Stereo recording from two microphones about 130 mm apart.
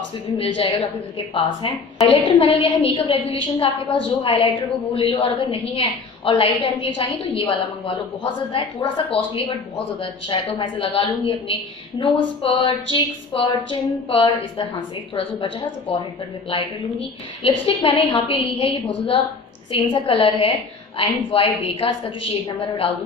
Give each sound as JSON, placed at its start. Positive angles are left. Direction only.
{"t": 0.4, "sound": "a woman's voice", "side_deg": 45}
{"t": 15.9, "sound": "a woman's voice", "side_deg": 50}